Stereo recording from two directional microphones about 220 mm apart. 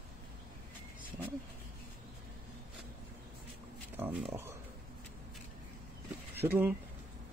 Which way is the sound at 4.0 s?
10° right (ahead or behind).